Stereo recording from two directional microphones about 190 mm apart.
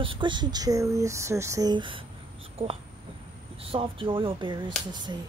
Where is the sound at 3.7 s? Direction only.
25° right (ahead or behind).